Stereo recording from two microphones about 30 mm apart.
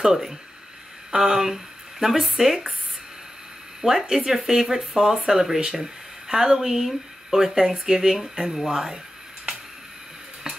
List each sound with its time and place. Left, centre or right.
0.0 s speech: centre
4.1 s speech: centre